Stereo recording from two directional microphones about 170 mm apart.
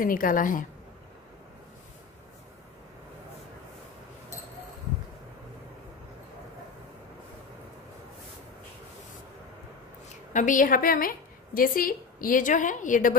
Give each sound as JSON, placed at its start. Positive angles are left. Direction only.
{"t": 0.0, "sound": "a woman's voice", "side_deg": 55}
{"t": 10.3, "sound": "a woman's voice", "side_deg": 50}